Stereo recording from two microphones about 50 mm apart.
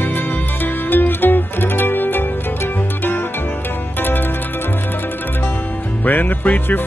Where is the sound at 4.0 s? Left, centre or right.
Left.